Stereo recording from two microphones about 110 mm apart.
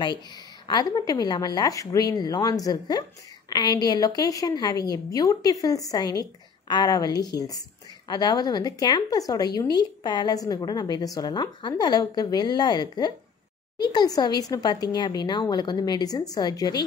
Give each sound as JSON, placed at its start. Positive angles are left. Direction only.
{"t": 0.7, "sound": "a woman's voice", "side_deg": 35}